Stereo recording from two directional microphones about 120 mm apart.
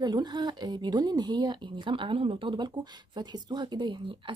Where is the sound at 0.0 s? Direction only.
35° right (ahead or behind).